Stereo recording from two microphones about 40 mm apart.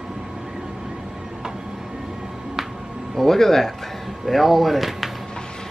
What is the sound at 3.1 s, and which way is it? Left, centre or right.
Speech, centre.